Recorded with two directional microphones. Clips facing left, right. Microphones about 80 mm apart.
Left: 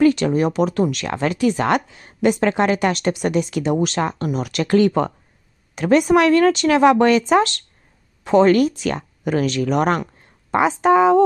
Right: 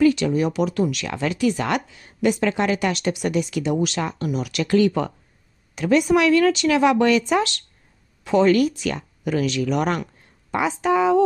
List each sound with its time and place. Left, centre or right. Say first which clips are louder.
0.0 s speech: left 2 dB; left